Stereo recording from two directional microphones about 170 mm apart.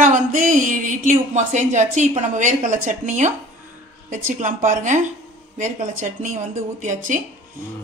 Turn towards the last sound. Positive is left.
turn(degrees=-50)  # may be behind; listen again after turning